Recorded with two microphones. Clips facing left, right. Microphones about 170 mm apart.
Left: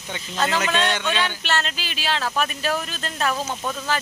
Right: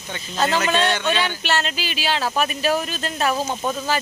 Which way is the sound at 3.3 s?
25° right (ahead or behind).